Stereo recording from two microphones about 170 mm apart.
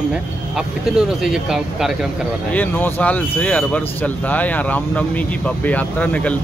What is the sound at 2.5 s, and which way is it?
Speech, 10° left (ahead or behind).